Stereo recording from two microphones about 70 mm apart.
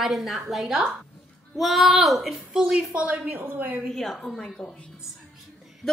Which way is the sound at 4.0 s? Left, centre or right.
Centre.